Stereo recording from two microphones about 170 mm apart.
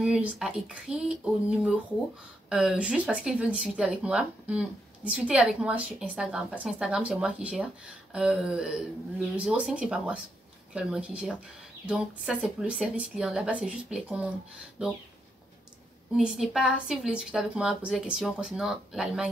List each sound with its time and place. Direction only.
0.0 s speech: 5° right (ahead or behind)
16.2 s speech: 5° right (ahead or behind)